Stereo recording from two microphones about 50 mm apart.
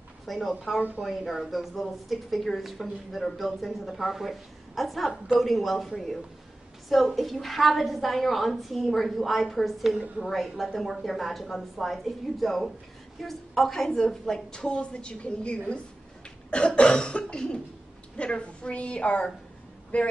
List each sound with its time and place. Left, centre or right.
0.3 s a woman's voice: centre; by 20.1 s left